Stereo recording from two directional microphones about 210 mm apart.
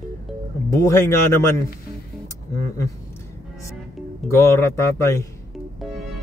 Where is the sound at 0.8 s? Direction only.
15° left (ahead or behind).